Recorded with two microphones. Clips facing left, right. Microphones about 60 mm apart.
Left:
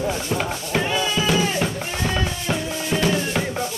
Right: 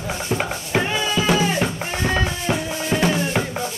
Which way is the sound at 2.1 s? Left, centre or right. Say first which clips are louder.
Right 4 dB; centre.